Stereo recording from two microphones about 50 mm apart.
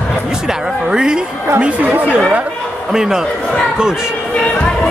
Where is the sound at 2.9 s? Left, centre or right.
Centre.